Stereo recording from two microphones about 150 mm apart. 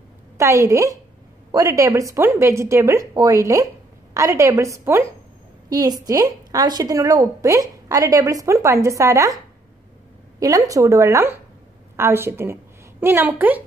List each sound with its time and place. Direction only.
0.4 s a woman's voice: 20° right (ahead or behind)
10.4 s a woman's voice: 20° right (ahead or behind)